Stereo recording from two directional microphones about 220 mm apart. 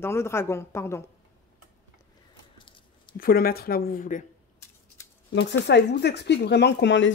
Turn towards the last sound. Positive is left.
turn(degrees=55)  # may be behind; listen again after turning